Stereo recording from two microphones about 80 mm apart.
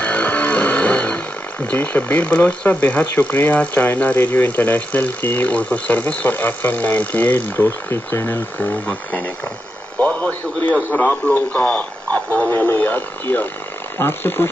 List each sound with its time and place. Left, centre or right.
0.0 s speech: centre
10.9 s speech: left